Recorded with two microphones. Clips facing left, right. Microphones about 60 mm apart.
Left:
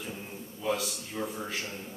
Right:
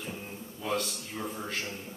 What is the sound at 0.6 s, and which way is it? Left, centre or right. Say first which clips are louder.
Speech: left 1 dB; centre.